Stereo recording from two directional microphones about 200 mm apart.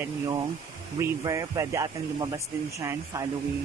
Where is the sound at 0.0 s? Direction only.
20° right (ahead or behind).